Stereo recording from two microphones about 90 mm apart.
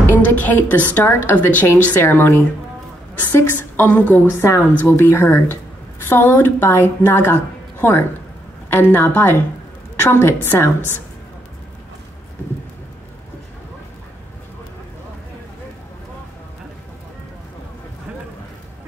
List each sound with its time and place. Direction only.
0.1 s a woman's voice: 20° left (ahead or behind)